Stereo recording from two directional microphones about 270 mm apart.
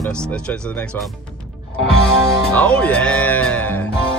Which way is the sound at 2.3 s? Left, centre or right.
Centre.